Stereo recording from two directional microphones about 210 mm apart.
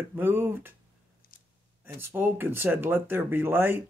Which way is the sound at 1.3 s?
40° left (ahead or behind).